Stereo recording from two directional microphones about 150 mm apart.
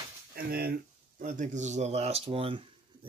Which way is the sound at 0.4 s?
90° right.